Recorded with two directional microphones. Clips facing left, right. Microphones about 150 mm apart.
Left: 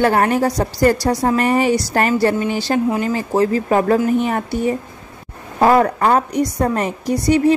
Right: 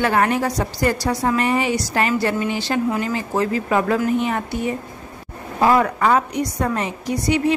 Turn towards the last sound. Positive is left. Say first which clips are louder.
# left 5 dB
turn(degrees=40)  # may be behind; listen again after turning